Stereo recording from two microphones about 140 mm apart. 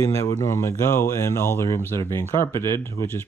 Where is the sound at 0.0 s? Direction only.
20° left (ahead or behind).